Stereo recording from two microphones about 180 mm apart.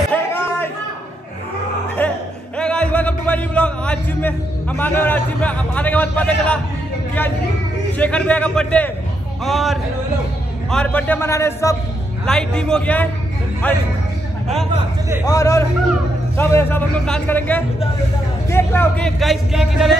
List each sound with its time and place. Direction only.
0.1 s a sound: 10° left (ahead or behind)
2.0 s music: 5° left (ahead or behind)
8.0 s a man's voice: 5° left (ahead or behind)
12.3 s a man's voice: 5° left (ahead or behind)
15.2 s a man's voice: 20° left (ahead or behind); by 19.9 s centre (ahead or behind)